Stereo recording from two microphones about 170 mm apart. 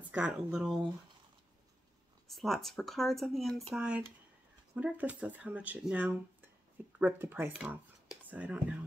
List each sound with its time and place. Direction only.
0.1 s speech: 10° right (ahead or behind)
2.2 s speech: centre (ahead or behind)